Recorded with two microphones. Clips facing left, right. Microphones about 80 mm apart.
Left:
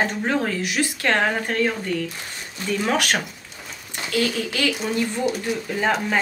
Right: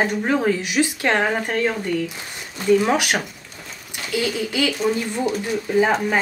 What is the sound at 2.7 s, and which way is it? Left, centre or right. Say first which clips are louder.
Speech: right 5 dB; centre.